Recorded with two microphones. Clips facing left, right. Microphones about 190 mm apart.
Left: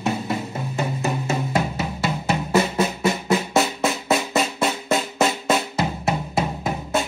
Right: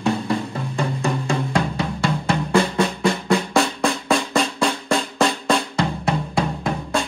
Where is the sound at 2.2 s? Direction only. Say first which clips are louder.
Right 1 dB; 5° left (ahead or behind).